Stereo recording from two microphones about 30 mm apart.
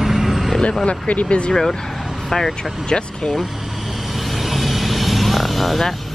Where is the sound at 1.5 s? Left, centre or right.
Centre.